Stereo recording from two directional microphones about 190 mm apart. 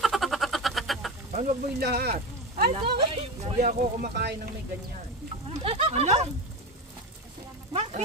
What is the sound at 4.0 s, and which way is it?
Speech, 55° right (ahead or behind).